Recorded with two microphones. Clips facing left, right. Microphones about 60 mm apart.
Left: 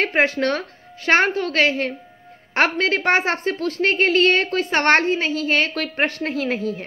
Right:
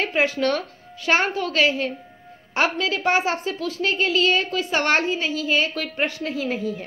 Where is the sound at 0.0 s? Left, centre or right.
Left.